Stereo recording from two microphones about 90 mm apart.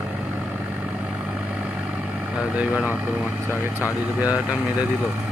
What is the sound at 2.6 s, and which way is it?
Speech, 15° right (ahead or behind).